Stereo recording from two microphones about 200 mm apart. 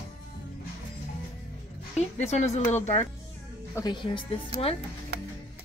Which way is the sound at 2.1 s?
35° left (ahead or behind).